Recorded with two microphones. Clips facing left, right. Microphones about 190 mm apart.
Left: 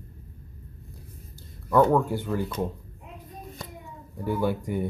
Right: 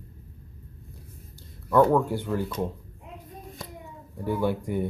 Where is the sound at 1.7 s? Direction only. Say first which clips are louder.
Even; centre (ahead or behind).